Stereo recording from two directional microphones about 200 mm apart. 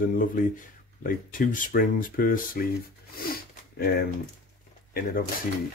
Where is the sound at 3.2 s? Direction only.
50° left (ahead or behind).